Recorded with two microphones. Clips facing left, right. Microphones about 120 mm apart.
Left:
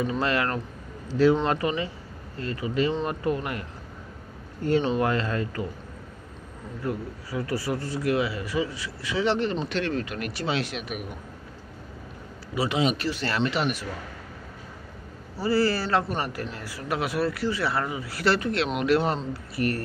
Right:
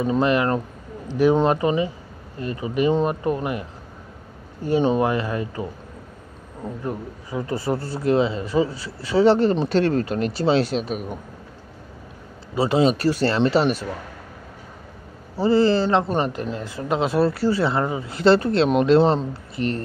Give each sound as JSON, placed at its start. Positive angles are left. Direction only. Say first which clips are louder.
{"t": 0.2, "sound": "a man's voice", "louder": "right 6 dB", "side_deg": -20}
{"t": 6.8, "sound": "a man's voice", "louder": "left 2 dB", "side_deg": -20}
{"t": 12.5, "sound": "speech", "louder": "right 6 dB", "side_deg": -35}
{"t": 15.3, "sound": "a man's voice", "louder": "right 6 dB", "side_deg": -25}